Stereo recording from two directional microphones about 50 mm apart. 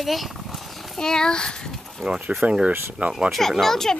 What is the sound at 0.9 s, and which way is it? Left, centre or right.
Speech, centre.